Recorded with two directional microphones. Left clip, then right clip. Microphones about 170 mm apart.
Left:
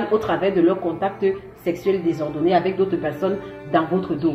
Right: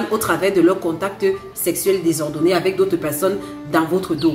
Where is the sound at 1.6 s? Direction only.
25° right (ahead or behind).